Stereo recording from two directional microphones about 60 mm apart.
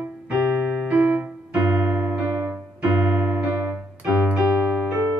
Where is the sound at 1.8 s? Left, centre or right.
Right.